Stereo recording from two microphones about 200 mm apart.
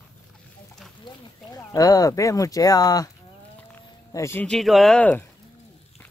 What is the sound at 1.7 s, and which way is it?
Speech, 20° left (ahead or behind).